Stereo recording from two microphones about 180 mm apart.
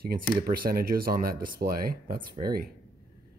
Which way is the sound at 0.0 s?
55° right (ahead or behind).